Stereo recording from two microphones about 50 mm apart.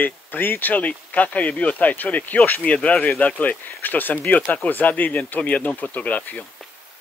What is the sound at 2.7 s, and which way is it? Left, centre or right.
Speech, left.